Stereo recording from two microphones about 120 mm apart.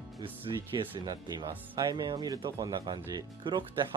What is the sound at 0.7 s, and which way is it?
Speech, 40° right (ahead or behind).